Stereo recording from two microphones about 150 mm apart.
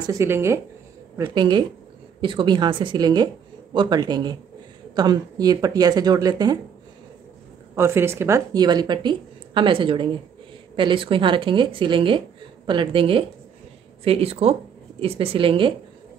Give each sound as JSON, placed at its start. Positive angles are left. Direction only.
{"t": 0.0, "sound": "a woman's voice", "side_deg": -20}
{"t": 1.2, "sound": "a woman's voice", "side_deg": -30}
{"t": 7.7, "sound": "a woman's voice", "side_deg": -15}